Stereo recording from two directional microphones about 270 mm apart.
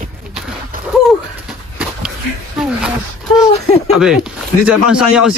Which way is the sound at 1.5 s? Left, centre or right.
Centre.